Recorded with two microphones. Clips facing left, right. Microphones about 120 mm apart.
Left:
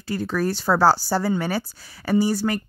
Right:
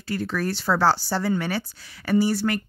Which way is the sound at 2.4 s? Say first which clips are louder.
Left 1 dB; 20° left (ahead or behind).